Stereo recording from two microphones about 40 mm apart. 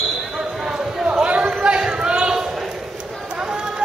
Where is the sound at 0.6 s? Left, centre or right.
Centre.